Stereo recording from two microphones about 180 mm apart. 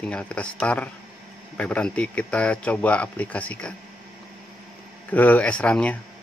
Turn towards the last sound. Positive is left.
turn(degrees=5)  # may be behind; listen again after turning